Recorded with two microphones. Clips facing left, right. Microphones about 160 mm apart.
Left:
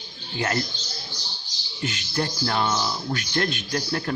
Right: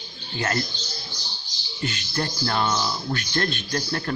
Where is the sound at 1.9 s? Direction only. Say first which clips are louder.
Left 4 dB; 10° left (ahead or behind).